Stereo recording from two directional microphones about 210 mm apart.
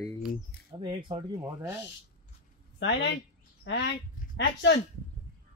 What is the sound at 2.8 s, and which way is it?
Speech, 55° left (ahead or behind).